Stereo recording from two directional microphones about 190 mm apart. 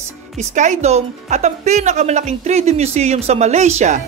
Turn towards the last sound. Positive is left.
turn(degrees=-40)  # may be behind; listen again after turning